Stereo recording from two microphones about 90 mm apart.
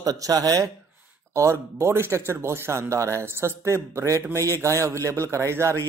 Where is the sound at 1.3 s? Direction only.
35° right (ahead or behind).